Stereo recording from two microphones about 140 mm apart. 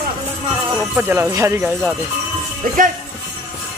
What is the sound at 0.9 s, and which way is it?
Speech, 15° right (ahead or behind).